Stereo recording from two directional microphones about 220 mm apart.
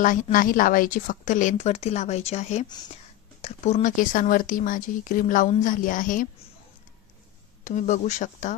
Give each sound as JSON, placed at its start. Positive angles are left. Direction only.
{"t": 0.0, "sound": "speech", "side_deg": 35}
{"t": 7.6, "sound": "speech", "side_deg": 35}